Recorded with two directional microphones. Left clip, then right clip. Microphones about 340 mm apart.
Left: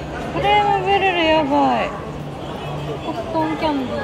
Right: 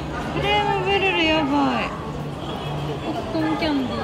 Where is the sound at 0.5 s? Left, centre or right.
Right.